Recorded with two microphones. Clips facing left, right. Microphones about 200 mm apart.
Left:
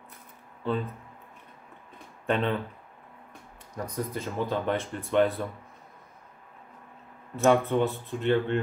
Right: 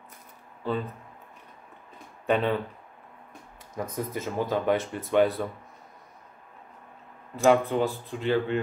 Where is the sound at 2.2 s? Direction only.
5° right (ahead or behind).